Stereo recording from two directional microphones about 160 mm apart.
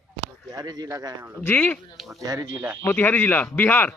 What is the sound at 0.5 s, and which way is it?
Speech, 25° right (ahead or behind).